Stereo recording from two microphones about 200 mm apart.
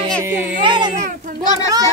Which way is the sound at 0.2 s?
10° right (ahead or behind).